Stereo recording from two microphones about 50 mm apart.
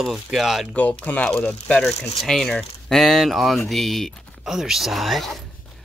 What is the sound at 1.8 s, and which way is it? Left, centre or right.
Speech, centre.